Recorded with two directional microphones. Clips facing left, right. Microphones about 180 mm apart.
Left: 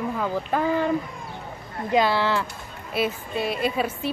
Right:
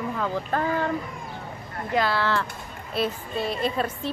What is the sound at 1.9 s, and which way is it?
Speech, 20° left (ahead or behind).